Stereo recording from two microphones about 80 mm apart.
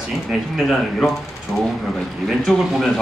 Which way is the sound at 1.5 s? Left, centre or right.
Centre.